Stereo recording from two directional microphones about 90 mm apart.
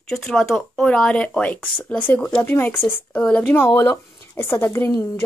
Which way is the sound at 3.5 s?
25° left (ahead or behind).